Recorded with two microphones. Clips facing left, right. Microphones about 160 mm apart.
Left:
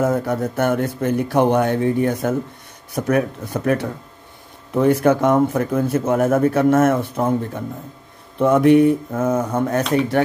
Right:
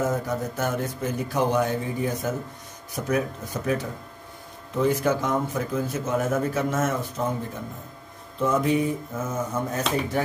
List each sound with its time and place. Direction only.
0.0 s speech: 60° left (ahead or behind)